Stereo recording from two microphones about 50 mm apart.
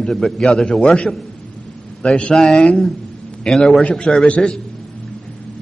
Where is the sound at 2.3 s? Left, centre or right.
Centre.